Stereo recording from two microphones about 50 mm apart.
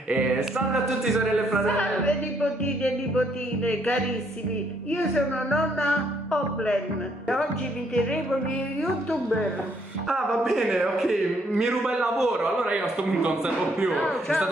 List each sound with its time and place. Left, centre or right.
0.1 s music: right
1.0 s speech: centre
1.7 s music: left
5.1 s music: centre
10.0 s a man's voice: centre
12.6 s a man's voice: right
14.0 s speech: centre